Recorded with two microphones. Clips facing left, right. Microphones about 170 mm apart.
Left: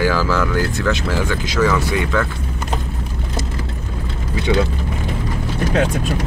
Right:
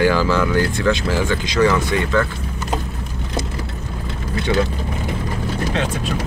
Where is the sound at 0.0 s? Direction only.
Centre (ahead or behind).